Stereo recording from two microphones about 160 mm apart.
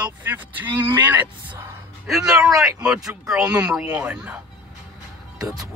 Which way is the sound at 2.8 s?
5° right (ahead or behind).